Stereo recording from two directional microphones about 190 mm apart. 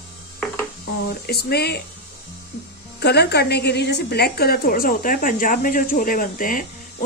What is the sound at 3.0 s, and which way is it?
A woman's voice, 60° left (ahead or behind).